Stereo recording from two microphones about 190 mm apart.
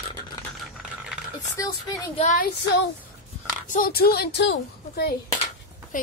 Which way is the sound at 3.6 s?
45° left (ahead or behind).